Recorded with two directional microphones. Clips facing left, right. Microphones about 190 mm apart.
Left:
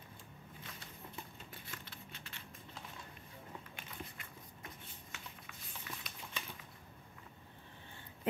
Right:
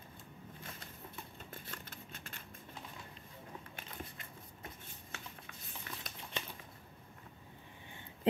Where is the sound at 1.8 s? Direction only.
45° right (ahead or behind).